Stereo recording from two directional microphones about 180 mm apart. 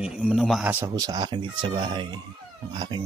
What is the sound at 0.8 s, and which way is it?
Speech, 20° right (ahead or behind).